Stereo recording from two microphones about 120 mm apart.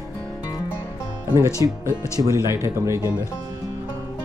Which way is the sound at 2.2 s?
25° right (ahead or behind).